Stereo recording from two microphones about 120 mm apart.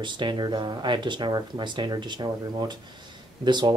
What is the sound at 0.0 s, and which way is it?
Speech, 40° right (ahead or behind).